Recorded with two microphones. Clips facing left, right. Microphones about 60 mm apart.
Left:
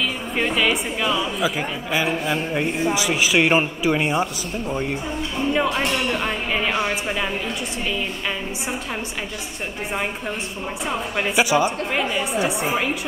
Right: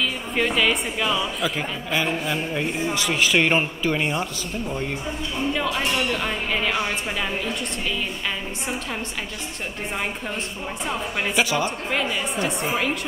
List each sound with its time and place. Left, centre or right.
0.4 s a woman's voice: centre
10.9 s a woman's voice: centre